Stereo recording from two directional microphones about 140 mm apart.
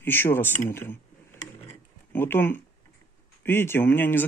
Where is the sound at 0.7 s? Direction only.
15° left (ahead or behind).